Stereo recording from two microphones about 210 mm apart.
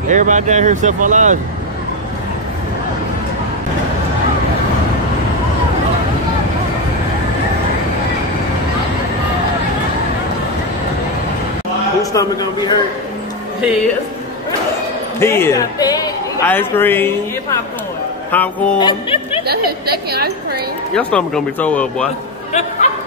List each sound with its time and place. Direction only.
0.1 s speech: 35° right (ahead or behind)
12.0 s speech: 15° left (ahead or behind)
15.1 s a woman's voice: 10° left (ahead or behind)
18.3 s speech: 10° left (ahead or behind)
18.8 s speech: 20° left (ahead or behind)
19.4 s a woman's voice: 50° right (ahead or behind)
20.9 s speech: 5° left (ahead or behind)
22.5 s speech: 35° left (ahead or behind)